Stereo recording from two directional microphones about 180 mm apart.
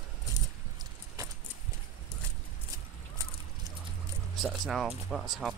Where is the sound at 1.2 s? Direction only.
20° right (ahead or behind).